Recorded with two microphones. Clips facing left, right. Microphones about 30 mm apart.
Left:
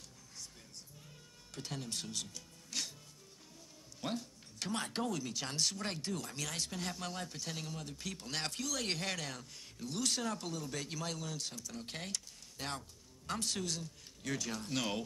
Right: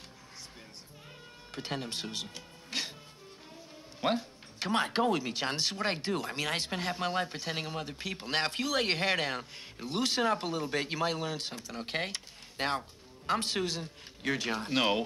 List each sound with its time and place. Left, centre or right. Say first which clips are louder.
1.5 s speech: right 6 dB; right
4.0 s speech: right 10 dB; right